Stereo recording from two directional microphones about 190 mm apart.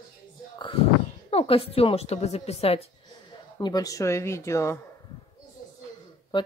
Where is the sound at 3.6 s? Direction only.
20° left (ahead or behind).